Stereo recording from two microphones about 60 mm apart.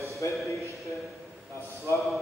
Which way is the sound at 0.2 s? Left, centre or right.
Left.